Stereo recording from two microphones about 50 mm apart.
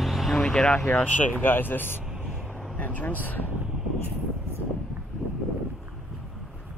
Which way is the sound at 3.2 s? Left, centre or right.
Left.